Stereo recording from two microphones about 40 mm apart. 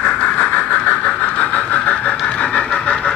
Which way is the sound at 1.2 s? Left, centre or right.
Left.